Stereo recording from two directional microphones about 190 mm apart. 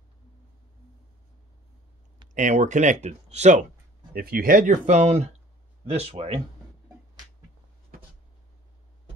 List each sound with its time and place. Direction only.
2.3 s speech: 40° right (ahead or behind)
4.1 s speech: 50° right (ahead or behind); by 6.4 s 30° right (ahead or behind)
7.9 s a sound: 50° right (ahead or behind)